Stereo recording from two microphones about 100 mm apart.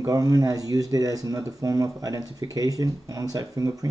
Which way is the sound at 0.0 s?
35° right (ahead or behind).